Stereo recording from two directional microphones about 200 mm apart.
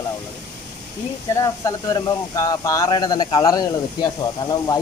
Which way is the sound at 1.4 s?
20° left (ahead or behind).